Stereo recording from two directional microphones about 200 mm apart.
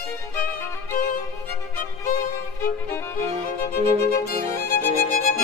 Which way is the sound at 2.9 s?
10° left (ahead or behind).